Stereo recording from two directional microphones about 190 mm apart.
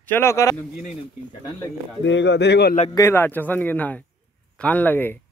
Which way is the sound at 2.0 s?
65° left (ahead or behind).